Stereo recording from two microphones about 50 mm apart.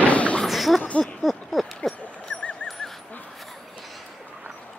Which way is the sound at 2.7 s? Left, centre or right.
Centre.